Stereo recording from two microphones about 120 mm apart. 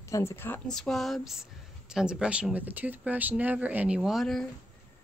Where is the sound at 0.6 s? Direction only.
5° left (ahead or behind).